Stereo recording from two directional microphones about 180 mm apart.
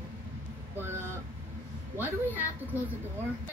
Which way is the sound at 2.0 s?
10° right (ahead or behind).